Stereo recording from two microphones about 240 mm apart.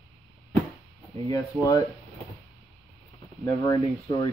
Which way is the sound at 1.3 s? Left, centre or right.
Centre.